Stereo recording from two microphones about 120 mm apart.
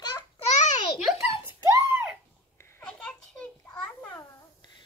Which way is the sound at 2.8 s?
10° left (ahead or behind).